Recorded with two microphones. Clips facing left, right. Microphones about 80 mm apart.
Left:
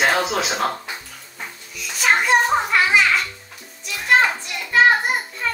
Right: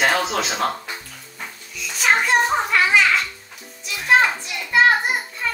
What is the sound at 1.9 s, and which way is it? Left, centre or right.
Children playing, centre.